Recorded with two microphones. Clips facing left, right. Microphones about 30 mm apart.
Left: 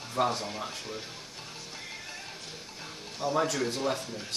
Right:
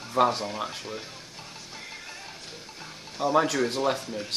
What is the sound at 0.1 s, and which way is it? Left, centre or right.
Speech, right.